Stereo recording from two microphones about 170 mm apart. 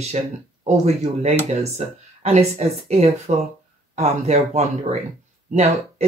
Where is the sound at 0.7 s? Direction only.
40° right (ahead or behind).